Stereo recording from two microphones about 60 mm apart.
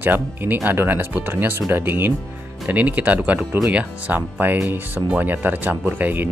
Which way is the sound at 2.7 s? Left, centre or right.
Right.